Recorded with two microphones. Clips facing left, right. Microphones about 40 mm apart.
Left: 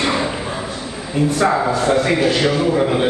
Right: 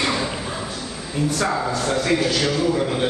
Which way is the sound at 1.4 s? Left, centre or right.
Left.